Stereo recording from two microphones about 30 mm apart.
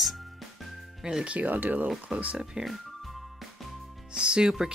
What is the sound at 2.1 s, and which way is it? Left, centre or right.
Speech, right.